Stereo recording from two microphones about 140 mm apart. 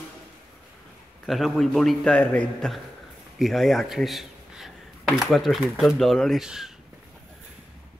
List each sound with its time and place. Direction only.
1.2 s a man's voice: centre (ahead or behind)